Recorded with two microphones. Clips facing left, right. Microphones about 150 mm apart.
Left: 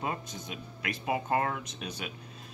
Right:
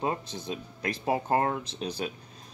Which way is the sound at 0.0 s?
30° right (ahead or behind).